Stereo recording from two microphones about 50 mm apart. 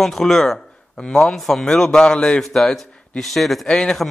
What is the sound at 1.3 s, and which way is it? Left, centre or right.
A man's voice, centre.